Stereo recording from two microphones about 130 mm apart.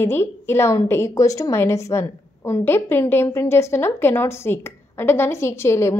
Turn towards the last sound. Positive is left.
turn(degrees=20)  # may be behind; listen again after turning